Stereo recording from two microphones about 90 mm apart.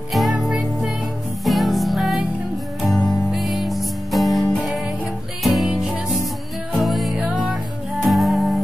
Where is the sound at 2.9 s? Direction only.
35° left (ahead or behind).